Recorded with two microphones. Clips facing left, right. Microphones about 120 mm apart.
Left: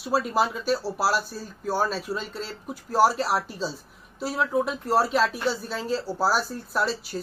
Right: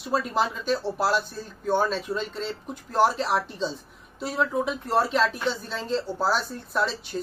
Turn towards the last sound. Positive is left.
turn(degrees=5)  # may be behind; listen again after turning